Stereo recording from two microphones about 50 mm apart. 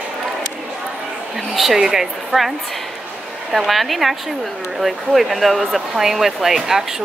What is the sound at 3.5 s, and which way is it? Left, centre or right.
Speech, centre.